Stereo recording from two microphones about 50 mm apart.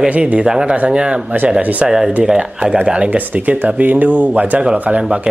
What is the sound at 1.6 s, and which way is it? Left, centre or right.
Speech, right.